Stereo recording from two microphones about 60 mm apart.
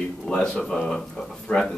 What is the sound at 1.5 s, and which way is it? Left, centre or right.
Speech, centre.